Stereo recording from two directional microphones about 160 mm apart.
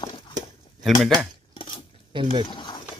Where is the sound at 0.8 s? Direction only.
Centre (ahead or behind).